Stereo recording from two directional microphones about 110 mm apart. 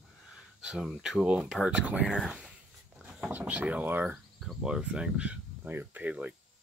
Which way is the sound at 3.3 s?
15° right (ahead or behind).